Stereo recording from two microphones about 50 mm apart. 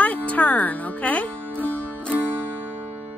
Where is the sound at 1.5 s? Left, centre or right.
Right.